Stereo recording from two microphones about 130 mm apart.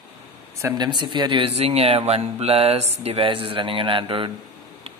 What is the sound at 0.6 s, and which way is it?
Speech, 25° right (ahead or behind).